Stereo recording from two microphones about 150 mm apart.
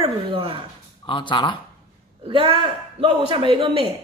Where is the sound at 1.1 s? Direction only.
35° left (ahead or behind).